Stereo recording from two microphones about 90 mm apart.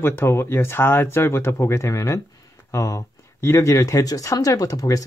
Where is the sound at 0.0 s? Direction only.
25° left (ahead or behind).